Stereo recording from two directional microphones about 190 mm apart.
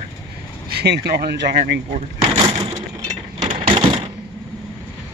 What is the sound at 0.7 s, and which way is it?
Speech, 60° right (ahead or behind).